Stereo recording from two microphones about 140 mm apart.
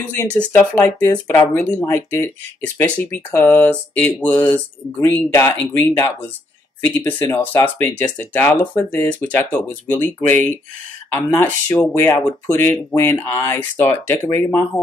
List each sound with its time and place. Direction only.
0.2 s speech: 10° left (ahead or behind)